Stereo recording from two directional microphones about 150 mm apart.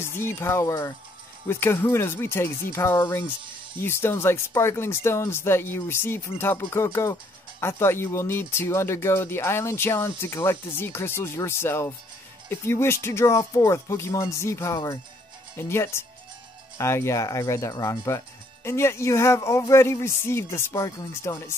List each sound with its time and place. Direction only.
0.0 s speech: 15° left (ahead or behind)